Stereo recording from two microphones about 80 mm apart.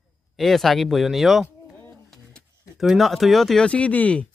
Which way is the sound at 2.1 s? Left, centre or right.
Centre.